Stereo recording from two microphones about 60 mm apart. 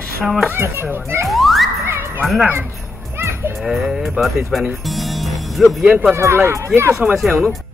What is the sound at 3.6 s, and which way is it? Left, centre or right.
Speech, centre.